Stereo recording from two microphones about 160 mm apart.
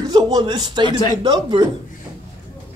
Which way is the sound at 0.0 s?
25° right (ahead or behind).